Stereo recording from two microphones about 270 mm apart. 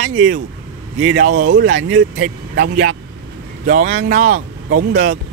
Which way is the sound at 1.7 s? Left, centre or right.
Right.